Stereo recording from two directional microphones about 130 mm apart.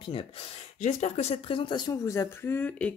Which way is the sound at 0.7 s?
65° left (ahead or behind).